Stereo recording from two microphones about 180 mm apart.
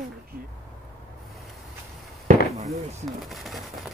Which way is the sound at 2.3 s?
50° right (ahead or behind).